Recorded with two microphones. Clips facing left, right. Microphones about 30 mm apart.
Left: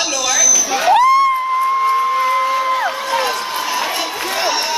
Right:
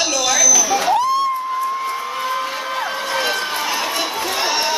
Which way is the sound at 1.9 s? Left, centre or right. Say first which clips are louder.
Left 8 dB; left.